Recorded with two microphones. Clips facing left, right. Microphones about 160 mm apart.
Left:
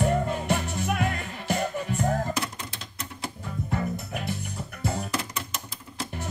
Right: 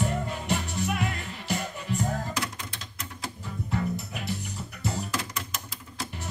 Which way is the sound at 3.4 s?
50° left (ahead or behind).